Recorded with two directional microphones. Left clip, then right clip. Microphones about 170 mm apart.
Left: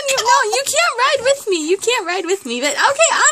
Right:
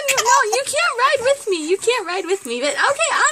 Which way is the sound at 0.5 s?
40° left (ahead or behind).